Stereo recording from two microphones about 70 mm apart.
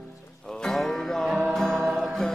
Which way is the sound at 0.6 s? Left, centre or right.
Centre.